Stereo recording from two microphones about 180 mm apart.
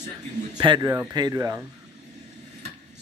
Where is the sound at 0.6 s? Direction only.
25° right (ahead or behind).